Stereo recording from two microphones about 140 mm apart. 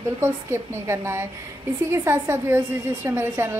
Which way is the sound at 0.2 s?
20° right (ahead or behind).